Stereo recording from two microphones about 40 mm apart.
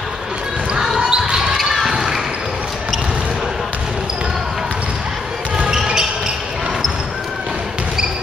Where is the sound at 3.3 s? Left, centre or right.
Centre.